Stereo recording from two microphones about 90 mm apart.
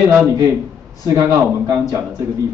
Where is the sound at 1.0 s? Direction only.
35° right (ahead or behind).